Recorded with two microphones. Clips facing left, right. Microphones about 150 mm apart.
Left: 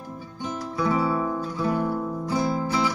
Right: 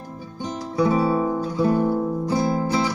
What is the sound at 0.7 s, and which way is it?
Music, 30° right (ahead or behind).